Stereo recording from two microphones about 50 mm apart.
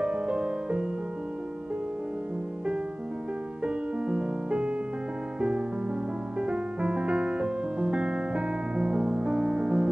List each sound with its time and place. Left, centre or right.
0.0 s music: right
3.6 s music: centre
6.4 s music: right